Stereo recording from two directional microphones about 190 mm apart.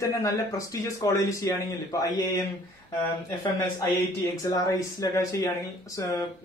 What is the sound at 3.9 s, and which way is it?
A man's voice, 15° left (ahead or behind).